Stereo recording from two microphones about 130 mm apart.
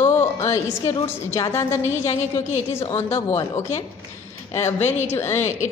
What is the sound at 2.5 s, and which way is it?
Speech, 45° left (ahead or behind).